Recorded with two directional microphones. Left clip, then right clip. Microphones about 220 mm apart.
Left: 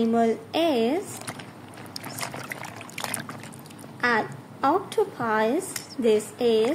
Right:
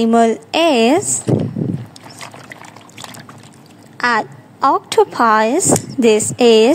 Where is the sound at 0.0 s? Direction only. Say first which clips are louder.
Right 10 dB; 40° right (ahead or behind).